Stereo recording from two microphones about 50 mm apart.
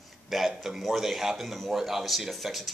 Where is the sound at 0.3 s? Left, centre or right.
Centre.